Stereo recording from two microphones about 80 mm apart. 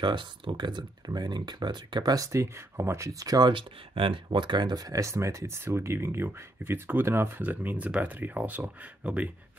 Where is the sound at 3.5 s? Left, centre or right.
Right.